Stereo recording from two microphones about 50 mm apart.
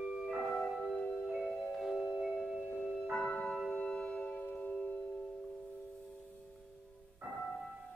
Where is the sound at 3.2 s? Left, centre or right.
Left.